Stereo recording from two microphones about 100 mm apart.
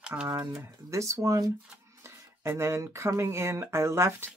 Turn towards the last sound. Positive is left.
turn(degrees=-25)  # may be behind; listen again after turning